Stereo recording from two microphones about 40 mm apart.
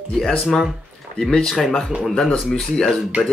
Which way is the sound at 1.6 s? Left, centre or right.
Centre.